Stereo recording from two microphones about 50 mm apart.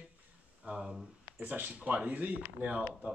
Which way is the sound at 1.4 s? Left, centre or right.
Right.